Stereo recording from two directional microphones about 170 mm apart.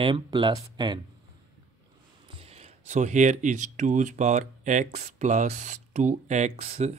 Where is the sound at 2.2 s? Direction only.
35° right (ahead or behind).